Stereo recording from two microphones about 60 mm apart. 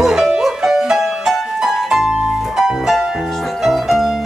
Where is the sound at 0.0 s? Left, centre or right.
Centre.